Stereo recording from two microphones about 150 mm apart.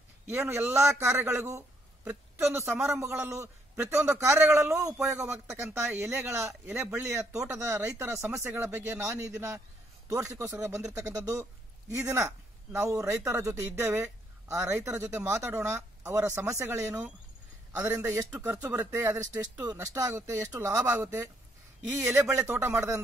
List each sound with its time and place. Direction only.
0.3 s a woman's voice: 15° right (ahead or behind)